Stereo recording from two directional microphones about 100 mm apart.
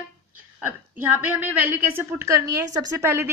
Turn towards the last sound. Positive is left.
turn(degrees=-25)  # may be behind; listen again after turning